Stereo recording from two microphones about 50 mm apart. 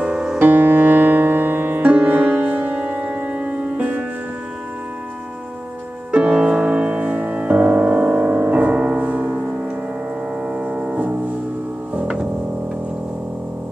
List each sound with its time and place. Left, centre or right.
0.0 s music: centre
0.4 s music: right
6.1 s music: right